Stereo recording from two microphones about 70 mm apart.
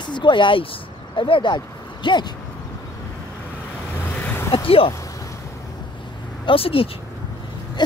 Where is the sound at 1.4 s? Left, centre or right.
Left.